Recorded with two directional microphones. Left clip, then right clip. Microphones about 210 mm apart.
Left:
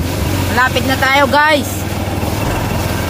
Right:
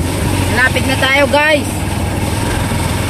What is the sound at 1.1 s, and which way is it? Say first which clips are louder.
Speech: even; 15° left (ahead or behind).